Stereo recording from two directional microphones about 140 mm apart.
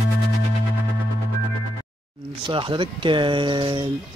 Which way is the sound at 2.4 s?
35° right (ahead or behind).